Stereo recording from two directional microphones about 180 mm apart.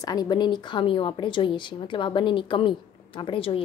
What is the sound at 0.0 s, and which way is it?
A woman's voice, 20° left (ahead or behind).